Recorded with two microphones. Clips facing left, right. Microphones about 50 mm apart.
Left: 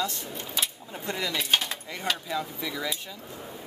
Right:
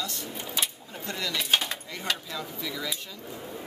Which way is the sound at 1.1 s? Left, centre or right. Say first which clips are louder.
Left 2 dB; centre.